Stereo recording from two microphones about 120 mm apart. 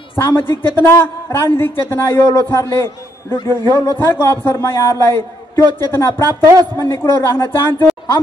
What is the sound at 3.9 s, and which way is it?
A woman's voice, 20° left (ahead or behind).